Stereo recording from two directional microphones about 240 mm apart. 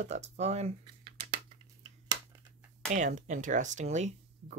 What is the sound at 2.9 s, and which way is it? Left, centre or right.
Speech, right.